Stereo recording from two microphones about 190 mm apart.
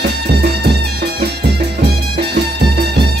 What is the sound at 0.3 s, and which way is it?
Music, 60° right (ahead or behind).